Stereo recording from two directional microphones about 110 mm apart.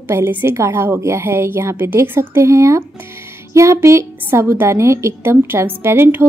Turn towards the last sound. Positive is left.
turn(degrees=-20)  # may be behind; listen again after turning